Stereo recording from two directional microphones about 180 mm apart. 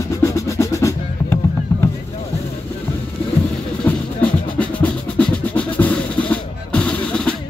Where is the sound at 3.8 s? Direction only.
5° left (ahead or behind).